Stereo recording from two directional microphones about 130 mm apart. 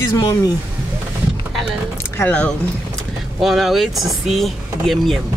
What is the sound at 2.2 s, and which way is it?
Speech, 15° left (ahead or behind).